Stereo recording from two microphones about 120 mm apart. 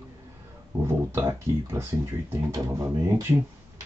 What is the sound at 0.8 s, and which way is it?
Speech, 25° right (ahead or behind).